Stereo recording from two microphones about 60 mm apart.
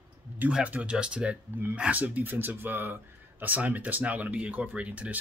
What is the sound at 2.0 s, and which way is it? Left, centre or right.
Speech, right.